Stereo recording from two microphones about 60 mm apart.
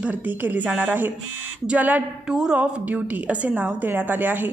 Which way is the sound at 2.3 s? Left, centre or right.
Centre.